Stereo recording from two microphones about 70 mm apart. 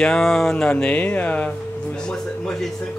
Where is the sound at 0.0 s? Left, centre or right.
Centre.